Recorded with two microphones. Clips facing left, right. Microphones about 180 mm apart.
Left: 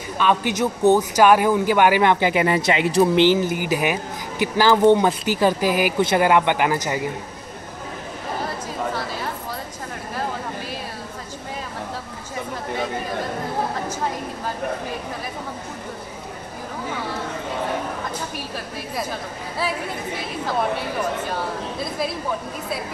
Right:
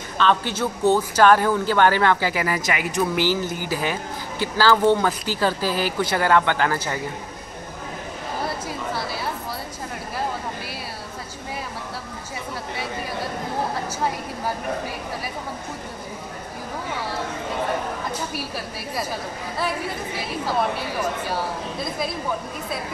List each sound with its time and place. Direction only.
0.2 s speech: 15° left (ahead or behind)